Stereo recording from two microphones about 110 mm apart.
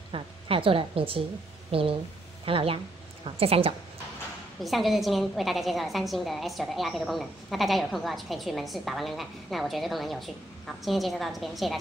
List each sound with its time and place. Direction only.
0.1 s a woman's voice: 55° right (ahead or behind)
4.6 s a woman's voice: centre (ahead or behind)